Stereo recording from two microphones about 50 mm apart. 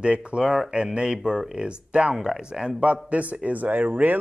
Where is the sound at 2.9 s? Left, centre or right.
Right.